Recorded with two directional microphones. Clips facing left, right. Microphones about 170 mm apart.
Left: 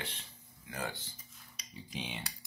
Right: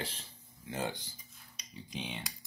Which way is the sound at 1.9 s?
Centre (ahead or behind).